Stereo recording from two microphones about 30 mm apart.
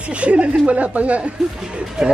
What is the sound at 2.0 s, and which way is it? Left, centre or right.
Speech, centre.